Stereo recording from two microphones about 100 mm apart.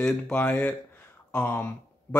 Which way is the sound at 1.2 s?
20° left (ahead or behind).